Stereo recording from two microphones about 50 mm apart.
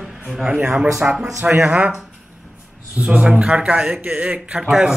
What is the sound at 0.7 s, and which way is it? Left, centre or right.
Speech, centre.